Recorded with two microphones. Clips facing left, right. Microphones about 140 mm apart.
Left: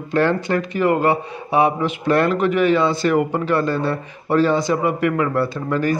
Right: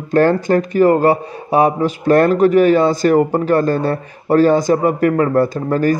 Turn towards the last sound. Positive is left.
turn(degrees=-40)  # may be behind; listen again after turning